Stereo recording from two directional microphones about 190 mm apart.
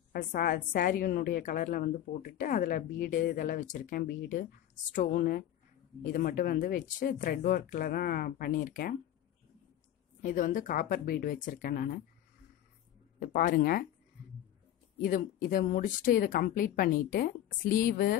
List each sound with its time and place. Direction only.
0.1 s a woman's voice: 50° left (ahead or behind)
10.2 s a woman's voice: 45° left (ahead or behind)
13.2 s a woman's voice: 45° left (ahead or behind)
15.0 s a woman's voice: 45° left (ahead or behind)